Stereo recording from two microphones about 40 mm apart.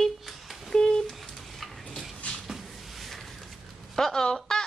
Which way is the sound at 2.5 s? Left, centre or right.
Centre.